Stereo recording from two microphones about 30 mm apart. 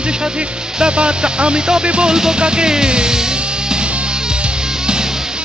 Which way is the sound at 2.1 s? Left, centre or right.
Right.